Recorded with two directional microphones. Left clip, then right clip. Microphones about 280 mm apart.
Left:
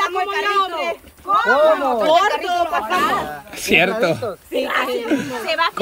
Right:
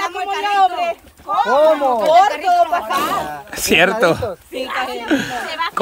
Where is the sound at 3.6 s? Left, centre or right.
Centre.